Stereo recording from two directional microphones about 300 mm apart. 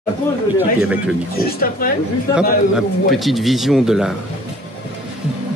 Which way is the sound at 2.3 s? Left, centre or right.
Centre.